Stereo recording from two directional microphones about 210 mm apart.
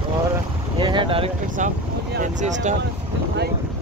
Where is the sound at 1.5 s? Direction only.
40° right (ahead or behind).